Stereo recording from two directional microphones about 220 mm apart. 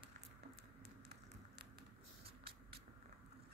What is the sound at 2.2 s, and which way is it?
Vehicle, 25° right (ahead or behind).